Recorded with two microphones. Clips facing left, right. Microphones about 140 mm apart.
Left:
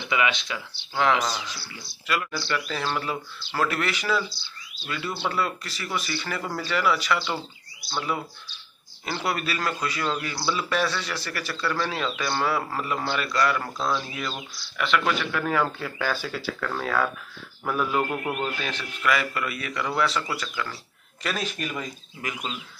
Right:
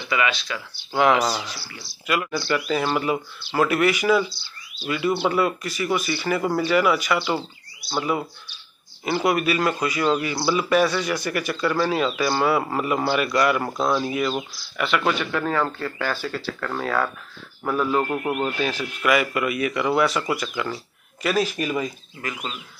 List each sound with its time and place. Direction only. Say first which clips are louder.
0.0 s speech: right 1 dB; 20° left (ahead or behind)
1.2 s speech: right 5 dB; 15° right (ahead or behind); by 18.2 s 5° left (ahead or behind)
18.3 s speech: right 5 dB; 5° right (ahead or behind)
21.2 s speech: right 7 dB; 5° right (ahead or behind)
22.2 s speech: right 2 dB; 15° left (ahead or behind)